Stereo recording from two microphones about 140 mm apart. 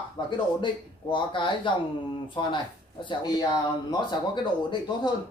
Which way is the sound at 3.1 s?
30° left (ahead or behind).